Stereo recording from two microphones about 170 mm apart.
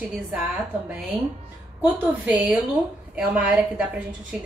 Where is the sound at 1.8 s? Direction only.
10° right (ahead or behind).